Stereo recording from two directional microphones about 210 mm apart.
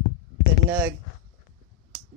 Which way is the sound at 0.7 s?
10° right (ahead or behind).